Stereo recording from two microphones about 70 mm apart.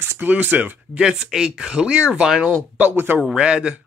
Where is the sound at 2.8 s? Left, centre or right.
Right.